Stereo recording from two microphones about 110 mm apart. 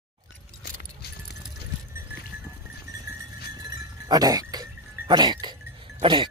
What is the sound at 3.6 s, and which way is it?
Goat, 35° right (ahead or behind).